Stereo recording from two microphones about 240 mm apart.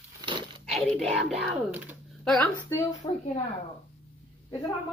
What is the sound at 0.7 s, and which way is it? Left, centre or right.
Speech, centre.